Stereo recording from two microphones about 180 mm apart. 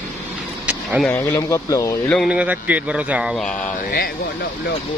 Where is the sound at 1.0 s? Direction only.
10° left (ahead or behind).